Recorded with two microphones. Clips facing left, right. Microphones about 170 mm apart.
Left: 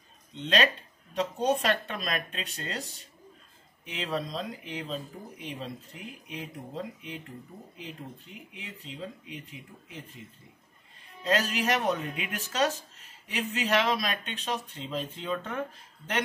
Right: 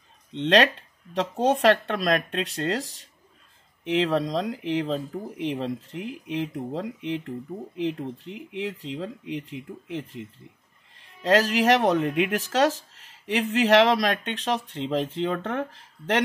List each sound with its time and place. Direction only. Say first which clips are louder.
0.3 s speech: right 7 dB; 85° right